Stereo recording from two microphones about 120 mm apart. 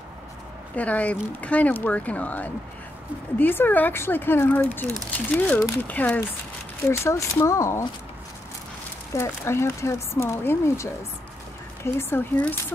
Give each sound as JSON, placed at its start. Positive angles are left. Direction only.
{"t": 0.7, "sound": "speech", "side_deg": 10}
{"t": 6.9, "sound": "speech", "side_deg": 25}
{"t": 9.1, "sound": "speech", "side_deg": 20}